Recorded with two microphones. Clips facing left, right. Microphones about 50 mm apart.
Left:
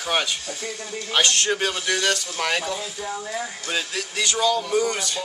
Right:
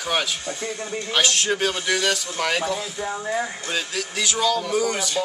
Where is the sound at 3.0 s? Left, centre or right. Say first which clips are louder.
Right 6 dB; right.